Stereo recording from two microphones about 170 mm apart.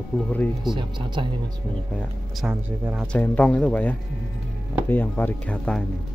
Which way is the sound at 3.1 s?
10° left (ahead or behind).